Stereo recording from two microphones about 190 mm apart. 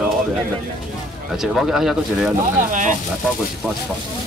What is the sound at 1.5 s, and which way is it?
Speech, centre (ahead or behind).